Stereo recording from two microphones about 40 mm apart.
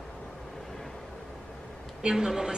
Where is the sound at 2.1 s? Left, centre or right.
Centre.